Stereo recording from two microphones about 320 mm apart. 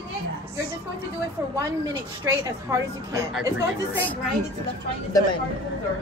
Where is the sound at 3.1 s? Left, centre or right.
Centre.